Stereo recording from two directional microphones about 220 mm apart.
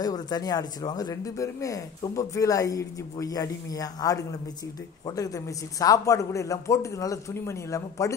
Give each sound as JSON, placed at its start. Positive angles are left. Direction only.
{"t": 0.0, "sound": "speech", "side_deg": 20}